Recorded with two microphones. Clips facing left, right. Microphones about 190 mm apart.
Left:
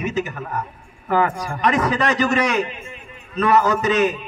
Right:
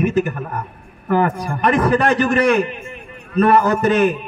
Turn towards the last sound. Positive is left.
turn(degrees=-55)  # may be behind; listen again after turning